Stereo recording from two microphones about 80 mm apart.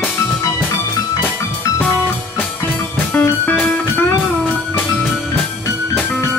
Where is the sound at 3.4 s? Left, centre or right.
Left.